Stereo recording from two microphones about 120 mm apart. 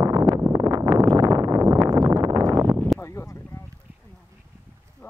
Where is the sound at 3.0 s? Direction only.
25° left (ahead or behind).